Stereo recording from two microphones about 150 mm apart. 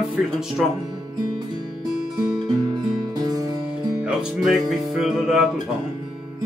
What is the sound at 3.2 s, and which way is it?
Music, 25° right (ahead or behind).